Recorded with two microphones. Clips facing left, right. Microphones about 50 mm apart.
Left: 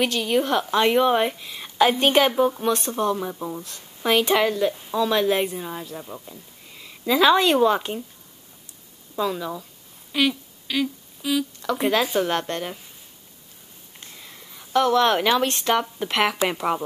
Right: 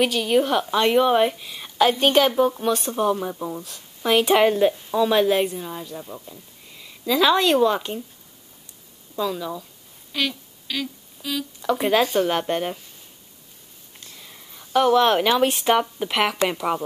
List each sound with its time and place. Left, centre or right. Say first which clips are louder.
0.0 s speech: right 2 dB; centre
4.5 s speech: right 4 dB; right
4.9 s speech: right 1 dB; centre
9.1 s speech: even; centre
10.1 s humming: left 4 dB; centre
11.6 s speech: right 5 dB; centre
14.2 s a sound: left 1 dB; centre
14.7 s speech: right 2 dB; centre